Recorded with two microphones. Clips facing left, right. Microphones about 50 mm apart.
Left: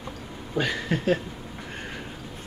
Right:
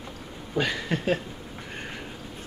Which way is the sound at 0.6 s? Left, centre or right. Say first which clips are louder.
Left 1 dB; centre.